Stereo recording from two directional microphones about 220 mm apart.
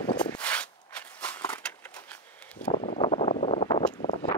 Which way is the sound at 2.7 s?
30° left (ahead or behind).